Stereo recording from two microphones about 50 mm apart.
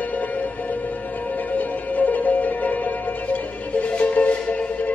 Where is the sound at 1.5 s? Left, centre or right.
Left.